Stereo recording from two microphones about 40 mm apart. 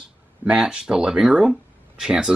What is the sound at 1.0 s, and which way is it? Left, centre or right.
Speech, right.